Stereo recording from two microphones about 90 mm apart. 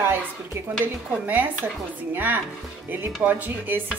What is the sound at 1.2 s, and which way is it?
Speech, 20° right (ahead or behind).